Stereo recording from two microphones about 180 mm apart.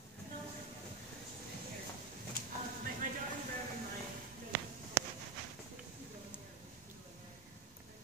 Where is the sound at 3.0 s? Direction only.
45° right (ahead or behind).